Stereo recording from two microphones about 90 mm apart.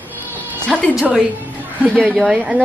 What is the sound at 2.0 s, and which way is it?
Speech, 5° right (ahead or behind).